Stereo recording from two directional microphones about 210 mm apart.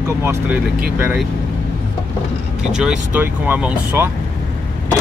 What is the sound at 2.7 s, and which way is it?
Speech, 5° right (ahead or behind).